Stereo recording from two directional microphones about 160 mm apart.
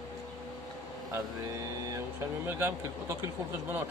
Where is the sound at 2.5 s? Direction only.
15° right (ahead or behind).